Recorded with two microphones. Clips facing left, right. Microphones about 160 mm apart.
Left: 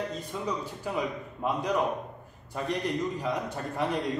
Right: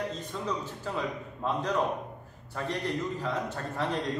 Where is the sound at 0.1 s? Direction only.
10° left (ahead or behind).